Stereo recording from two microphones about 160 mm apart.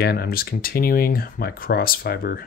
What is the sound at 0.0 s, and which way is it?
Speech, 75° left (ahead or behind).